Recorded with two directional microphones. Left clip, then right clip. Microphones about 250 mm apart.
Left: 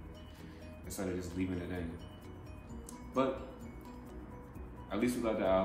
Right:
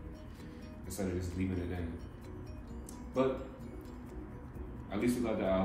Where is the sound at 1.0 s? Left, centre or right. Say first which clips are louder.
Even; centre.